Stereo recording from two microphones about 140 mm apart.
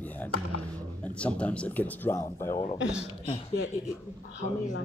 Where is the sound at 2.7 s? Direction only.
5° right (ahead or behind).